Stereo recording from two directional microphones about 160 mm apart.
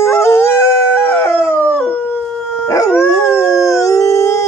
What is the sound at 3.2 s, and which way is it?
Howl, 20° left (ahead or behind).